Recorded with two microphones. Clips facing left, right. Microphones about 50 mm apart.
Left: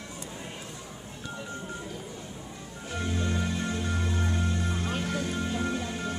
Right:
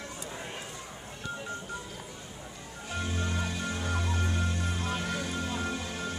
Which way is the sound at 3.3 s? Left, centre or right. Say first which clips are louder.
Left 3 dB; left.